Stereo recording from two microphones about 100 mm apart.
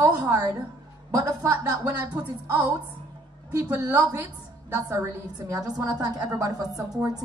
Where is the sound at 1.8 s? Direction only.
25° right (ahead or behind).